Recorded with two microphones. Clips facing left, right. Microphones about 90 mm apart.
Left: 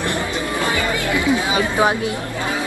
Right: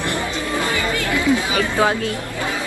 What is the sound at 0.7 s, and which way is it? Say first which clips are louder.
Music: left 1 dB; 20° left (ahead or behind).